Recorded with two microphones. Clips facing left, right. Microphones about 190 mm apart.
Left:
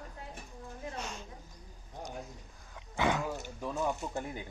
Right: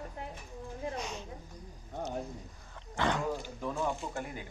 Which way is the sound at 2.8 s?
10° left (ahead or behind).